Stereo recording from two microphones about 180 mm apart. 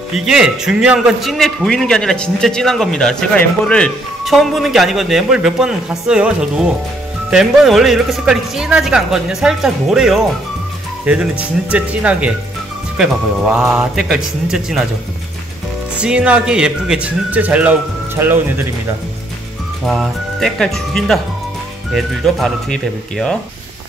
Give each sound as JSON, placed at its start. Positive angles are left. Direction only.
{"t": 0.1, "sound": "a man's voice", "side_deg": -5}
{"t": 16.0, "sound": "speech", "side_deg": -5}
{"t": 19.8, "sound": "a man's voice", "side_deg": 0}